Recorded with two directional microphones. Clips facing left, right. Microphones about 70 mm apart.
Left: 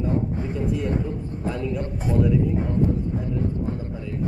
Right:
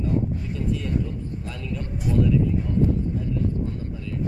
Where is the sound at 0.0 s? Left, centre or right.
Left.